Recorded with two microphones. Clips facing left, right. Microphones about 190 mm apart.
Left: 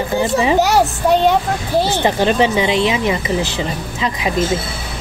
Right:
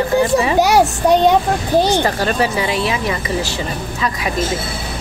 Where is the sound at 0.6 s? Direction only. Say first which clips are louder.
Right 1 dB; 15° right (ahead or behind).